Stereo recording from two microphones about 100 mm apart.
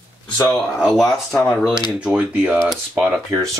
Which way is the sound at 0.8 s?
5° right (ahead or behind).